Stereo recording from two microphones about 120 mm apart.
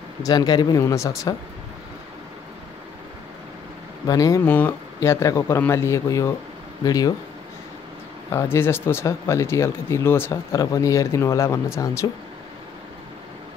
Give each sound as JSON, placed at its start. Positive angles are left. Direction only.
{"t": 0.2, "sound": "speech", "side_deg": 30}
{"t": 4.0, "sound": "speech", "side_deg": 30}
{"t": 4.5, "sound": "speech", "side_deg": 15}
{"t": 8.3, "sound": "speech", "side_deg": 20}